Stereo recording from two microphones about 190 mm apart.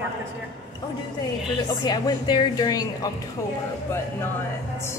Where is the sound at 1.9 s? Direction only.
20° left (ahead or behind).